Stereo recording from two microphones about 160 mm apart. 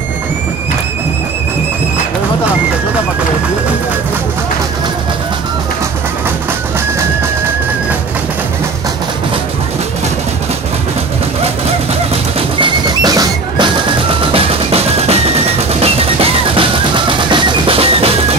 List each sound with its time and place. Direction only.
12.1 s music: 35° right (ahead or behind)
13.0 s music: 25° right (ahead or behind)
14.3 s music: 40° right (ahead or behind)